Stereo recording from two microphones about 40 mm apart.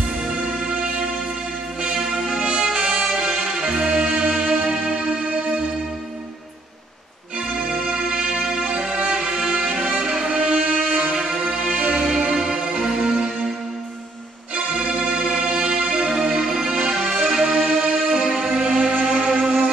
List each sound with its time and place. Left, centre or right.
0.1 s music: centre
7.3 s music: centre
11.1 s music: centre
11.8 s music: centre
14.8 s music: centre